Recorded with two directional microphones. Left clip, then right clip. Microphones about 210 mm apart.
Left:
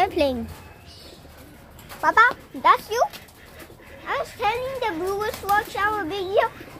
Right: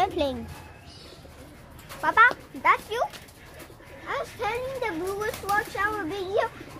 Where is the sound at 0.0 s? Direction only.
20° left (ahead or behind).